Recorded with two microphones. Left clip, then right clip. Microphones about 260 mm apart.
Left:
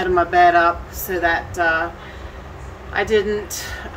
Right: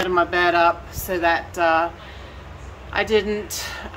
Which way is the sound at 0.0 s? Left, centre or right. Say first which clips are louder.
Left 5 dB; centre.